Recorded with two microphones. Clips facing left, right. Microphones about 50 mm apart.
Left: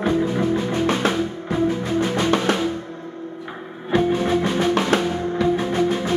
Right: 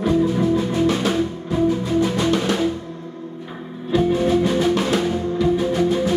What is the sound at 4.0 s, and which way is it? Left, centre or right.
Music, left.